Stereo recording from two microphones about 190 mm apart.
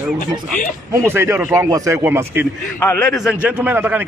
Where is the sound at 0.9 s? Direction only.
15° right (ahead or behind).